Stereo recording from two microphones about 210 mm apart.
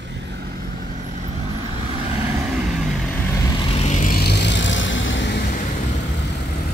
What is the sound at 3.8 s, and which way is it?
Vehicle, 35° left (ahead or behind).